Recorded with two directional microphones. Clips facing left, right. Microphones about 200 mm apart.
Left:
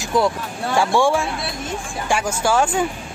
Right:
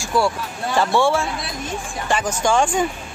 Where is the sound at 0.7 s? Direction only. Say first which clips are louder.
Even; 15° left (ahead or behind).